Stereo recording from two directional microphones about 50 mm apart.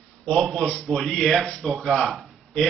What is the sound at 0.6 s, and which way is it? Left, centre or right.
Speech, left.